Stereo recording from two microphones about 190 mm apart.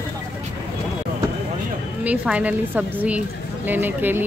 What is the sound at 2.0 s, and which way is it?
A woman's voice, 5° right (ahead or behind).